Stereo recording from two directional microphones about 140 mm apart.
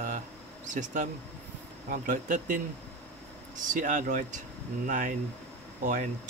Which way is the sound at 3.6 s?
65° right (ahead or behind).